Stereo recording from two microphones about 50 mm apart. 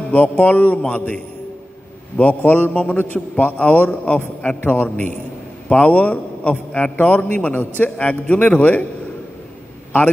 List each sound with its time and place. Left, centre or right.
0.1 s a man's voice: left
2.7 s a man's voice: centre
3.0 s a man's voice: left